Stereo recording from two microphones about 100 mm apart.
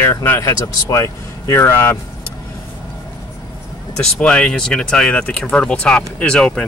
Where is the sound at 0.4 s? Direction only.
35° left (ahead or behind).